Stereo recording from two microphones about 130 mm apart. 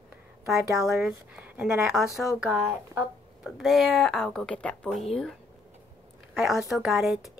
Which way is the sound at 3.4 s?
Centre (ahead or behind).